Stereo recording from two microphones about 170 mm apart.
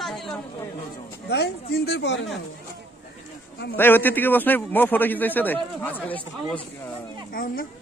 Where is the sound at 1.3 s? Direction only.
75° left (ahead or behind); by 2.2 s 90° left.